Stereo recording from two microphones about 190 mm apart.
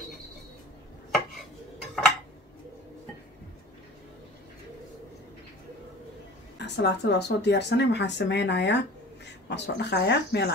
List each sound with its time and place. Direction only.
1.8 s dishes: centre (ahead or behind)
6.6 s speech: 60° left (ahead or behind)